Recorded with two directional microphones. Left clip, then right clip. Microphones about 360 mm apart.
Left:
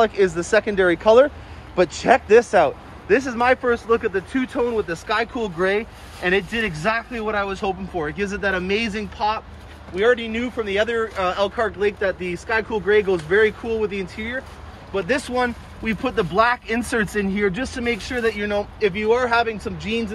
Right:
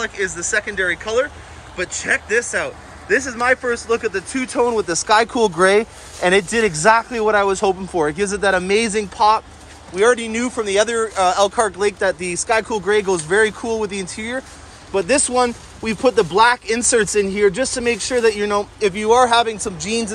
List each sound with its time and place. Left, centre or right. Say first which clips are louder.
0.0 s speech: left 5 dB; centre